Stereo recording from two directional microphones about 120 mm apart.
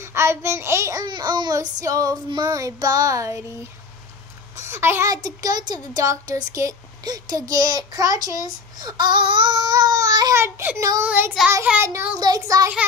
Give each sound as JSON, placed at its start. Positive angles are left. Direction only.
{"t": 0.1, "sound": "child singing", "side_deg": -20}
{"t": 1.0, "sound": "speech", "side_deg": -40}
{"t": 2.4, "sound": "child singing", "side_deg": -25}
{"t": 4.6, "sound": "a child's voice", "side_deg": -20}
{"t": 5.1, "sound": "speech", "side_deg": -30}
{"t": 10.3, "sound": "child singing", "side_deg": -20}
{"t": 12.2, "sound": "child singing", "side_deg": -30}